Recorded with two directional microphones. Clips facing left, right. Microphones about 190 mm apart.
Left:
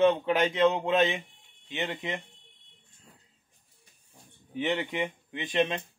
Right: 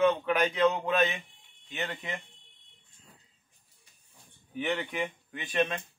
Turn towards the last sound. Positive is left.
turn(degrees=20)  # may be behind; listen again after turning